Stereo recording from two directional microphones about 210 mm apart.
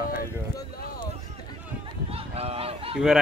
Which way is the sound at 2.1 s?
30° right (ahead or behind).